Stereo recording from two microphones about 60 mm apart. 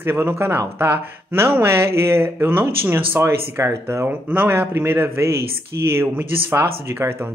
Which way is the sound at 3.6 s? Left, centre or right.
Right.